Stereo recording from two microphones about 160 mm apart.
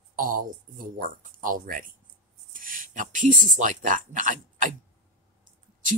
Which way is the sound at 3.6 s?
55° right (ahead or behind).